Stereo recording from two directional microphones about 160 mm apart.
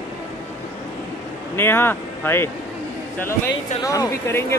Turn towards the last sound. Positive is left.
turn(degrees=15)  # may be behind; listen again after turning